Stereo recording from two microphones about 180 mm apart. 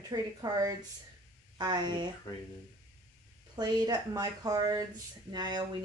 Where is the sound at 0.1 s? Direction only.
20° right (ahead or behind).